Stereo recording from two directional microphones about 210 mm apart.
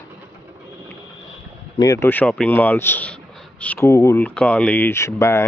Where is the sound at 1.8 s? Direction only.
15° left (ahead or behind).